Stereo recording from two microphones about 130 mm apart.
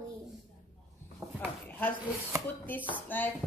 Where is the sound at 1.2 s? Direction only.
25° right (ahead or behind).